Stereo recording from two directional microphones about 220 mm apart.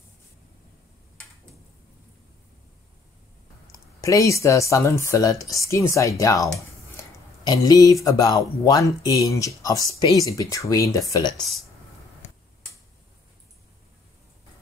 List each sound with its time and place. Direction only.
3.7 s speech: 15° left (ahead or behind)